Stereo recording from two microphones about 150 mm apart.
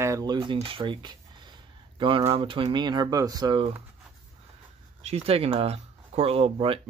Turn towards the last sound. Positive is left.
turn(degrees=-40)  # may be behind; listen again after turning